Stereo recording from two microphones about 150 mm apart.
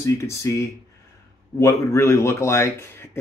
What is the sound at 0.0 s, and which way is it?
Speech, 20° left (ahead or behind).